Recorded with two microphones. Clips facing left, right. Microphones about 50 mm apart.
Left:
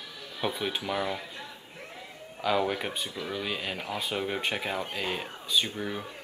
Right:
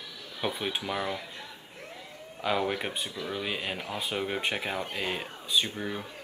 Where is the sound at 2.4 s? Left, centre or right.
Centre.